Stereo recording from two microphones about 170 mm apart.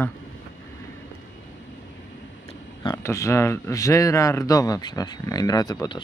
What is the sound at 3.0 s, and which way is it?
Speech, 15° left (ahead or behind).